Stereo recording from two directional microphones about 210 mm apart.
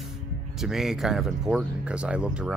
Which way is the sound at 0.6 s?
Centre (ahead or behind).